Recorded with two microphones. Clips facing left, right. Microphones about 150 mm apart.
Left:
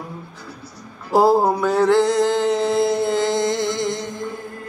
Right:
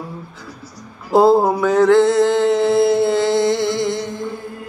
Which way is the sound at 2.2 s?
20° right (ahead or behind).